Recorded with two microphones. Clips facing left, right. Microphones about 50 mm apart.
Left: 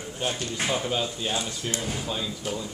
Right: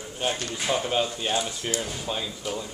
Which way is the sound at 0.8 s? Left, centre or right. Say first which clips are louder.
Right 2 dB; centre.